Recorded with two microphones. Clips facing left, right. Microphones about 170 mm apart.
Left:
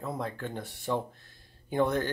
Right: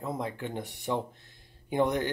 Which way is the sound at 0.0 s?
15° right (ahead or behind).